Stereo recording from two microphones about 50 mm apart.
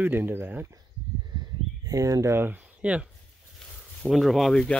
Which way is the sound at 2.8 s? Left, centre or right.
Right.